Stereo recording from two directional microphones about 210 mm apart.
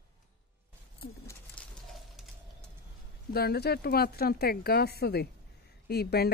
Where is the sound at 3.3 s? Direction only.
50° left (ahead or behind).